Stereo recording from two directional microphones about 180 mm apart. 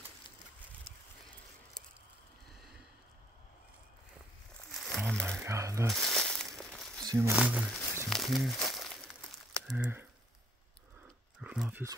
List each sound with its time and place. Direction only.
4.7 s music: 5° left (ahead or behind)
5.4 s speech: 15° right (ahead or behind)
5.9 s crumpling: 5° left (ahead or behind)
7.1 s speech: 15° right (ahead or behind)
7.8 s a sound: 15° left (ahead or behind)
8.1 s crumpling: centre (ahead or behind)
9.7 s speech: 10° right (ahead or behind)
11.4 s a sound: 5° right (ahead or behind)